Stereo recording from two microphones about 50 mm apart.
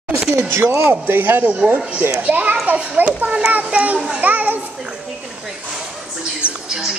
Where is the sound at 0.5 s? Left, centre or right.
Right.